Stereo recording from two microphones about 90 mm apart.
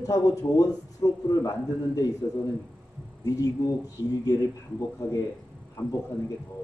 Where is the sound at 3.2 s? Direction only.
40° left (ahead or behind).